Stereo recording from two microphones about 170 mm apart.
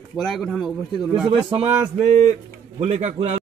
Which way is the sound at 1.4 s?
30° right (ahead or behind).